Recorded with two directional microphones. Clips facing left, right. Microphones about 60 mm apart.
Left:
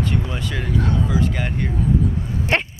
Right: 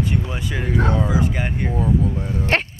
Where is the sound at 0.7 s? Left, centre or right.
Right.